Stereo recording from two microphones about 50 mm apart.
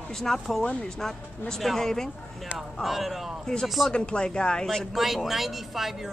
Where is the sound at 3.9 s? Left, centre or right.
Centre.